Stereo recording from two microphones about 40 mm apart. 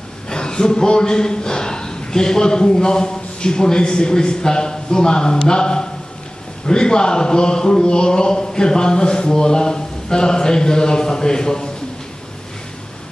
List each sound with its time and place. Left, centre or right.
0.3 s a man's voice: centre